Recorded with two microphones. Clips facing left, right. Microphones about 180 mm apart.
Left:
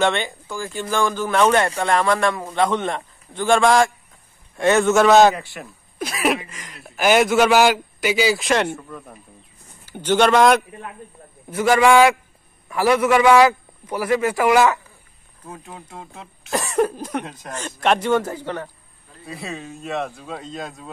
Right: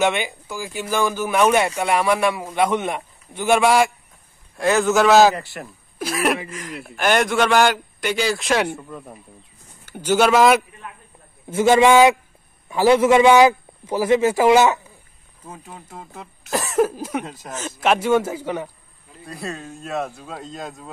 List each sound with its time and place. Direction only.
0.0 s a man's voice: 10° right (ahead or behind)
8.7 s a man's voice: 15° right (ahead or behind)
11.5 s a man's voice: 25° right (ahead or behind)
15.4 s speech: centre (ahead or behind)